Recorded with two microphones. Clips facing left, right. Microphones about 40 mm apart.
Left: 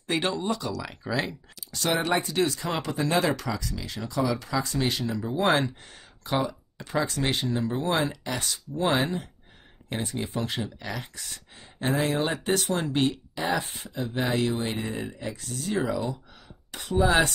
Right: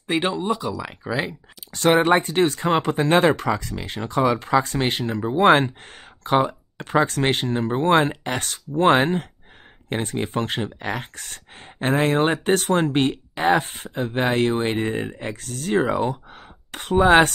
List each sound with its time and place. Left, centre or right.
0.0 s speech: centre
1.7 s speech: right